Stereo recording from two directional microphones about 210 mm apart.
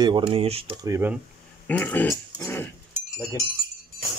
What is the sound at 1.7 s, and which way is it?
Speech, 5° left (ahead or behind).